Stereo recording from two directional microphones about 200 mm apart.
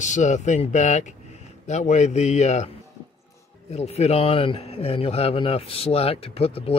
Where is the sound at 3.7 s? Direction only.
30° left (ahead or behind).